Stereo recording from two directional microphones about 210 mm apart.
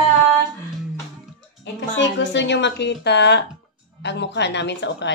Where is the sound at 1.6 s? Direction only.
60° left (ahead or behind).